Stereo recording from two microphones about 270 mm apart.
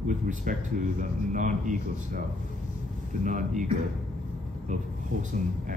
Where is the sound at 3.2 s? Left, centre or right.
Right.